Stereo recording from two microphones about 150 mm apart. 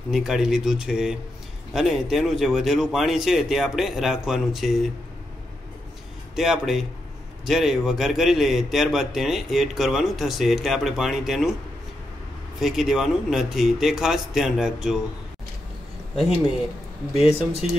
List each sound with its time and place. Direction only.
0.1 s a man's voice: 5° right (ahead or behind)
6.3 s a man's voice: centre (ahead or behind)
12.5 s a man's voice: centre (ahead or behind)
17.1 s speech: 40° left (ahead or behind)